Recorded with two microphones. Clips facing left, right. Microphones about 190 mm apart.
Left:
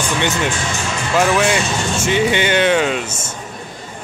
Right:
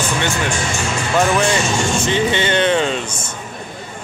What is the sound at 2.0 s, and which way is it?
Speech, 15° left (ahead or behind).